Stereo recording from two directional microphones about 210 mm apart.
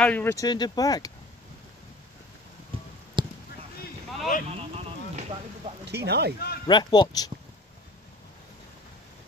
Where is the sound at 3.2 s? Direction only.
25° right (ahead or behind).